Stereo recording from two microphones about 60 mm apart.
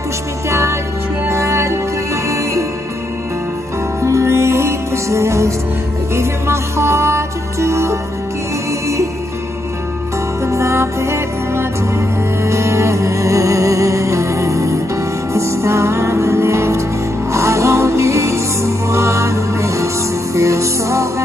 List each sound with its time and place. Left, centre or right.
0.5 s music: right
4.0 s music: right
10.4 s music: right